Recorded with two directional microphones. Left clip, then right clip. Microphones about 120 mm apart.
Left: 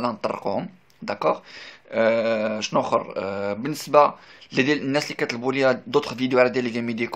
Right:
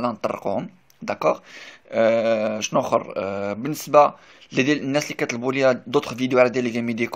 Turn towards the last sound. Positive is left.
turn(degrees=-35)  # may be behind; listen again after turning